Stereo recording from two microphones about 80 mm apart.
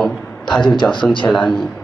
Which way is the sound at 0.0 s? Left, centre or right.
Centre.